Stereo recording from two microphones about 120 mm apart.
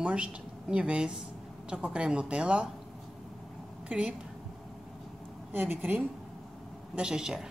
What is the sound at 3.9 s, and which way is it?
Speech, 10° right (ahead or behind).